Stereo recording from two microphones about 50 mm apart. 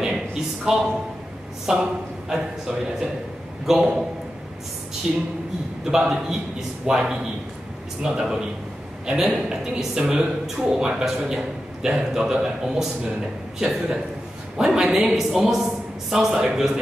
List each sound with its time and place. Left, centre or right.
0.0 s a sound: centre
1.7 s speech: centre
5.1 s speech: centre
14.6 s speech: centre